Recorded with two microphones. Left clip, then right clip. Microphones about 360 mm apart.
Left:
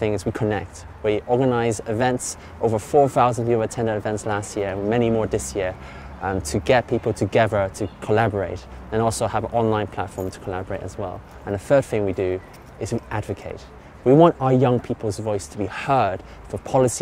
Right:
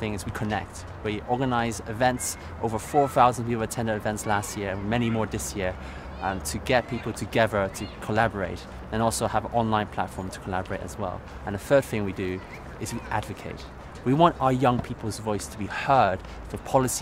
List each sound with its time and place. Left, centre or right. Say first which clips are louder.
0.0 s speech: left 9 dB; left
6.2 s speech: left 7 dB; left